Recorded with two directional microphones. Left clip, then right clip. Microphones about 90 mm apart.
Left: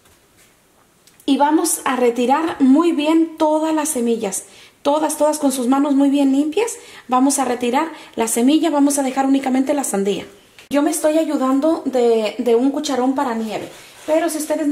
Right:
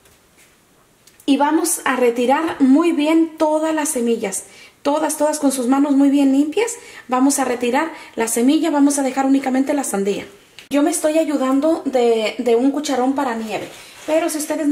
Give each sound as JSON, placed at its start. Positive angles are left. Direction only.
{"t": 1.2, "sound": "a woman's voice", "side_deg": 20}